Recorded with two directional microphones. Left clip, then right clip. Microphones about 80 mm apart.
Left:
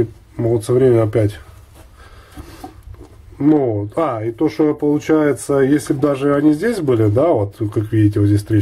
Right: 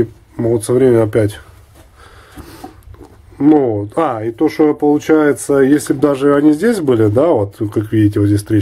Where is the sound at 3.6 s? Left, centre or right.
Right.